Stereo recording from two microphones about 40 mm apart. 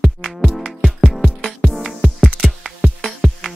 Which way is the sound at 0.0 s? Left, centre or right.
Centre.